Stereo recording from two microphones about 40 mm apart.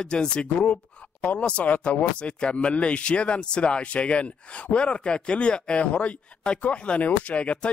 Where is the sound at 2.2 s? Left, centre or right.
Left.